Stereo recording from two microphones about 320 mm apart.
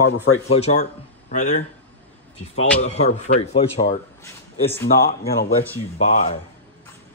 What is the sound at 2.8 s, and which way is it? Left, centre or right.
Speech, centre.